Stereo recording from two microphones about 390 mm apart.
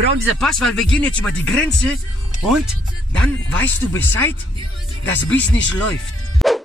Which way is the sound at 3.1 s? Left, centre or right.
Centre.